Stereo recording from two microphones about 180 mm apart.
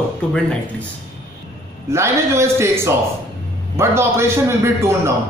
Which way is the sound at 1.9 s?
15° right (ahead or behind).